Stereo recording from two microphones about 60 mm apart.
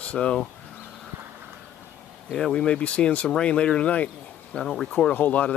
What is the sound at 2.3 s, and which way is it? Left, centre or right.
Speech, centre.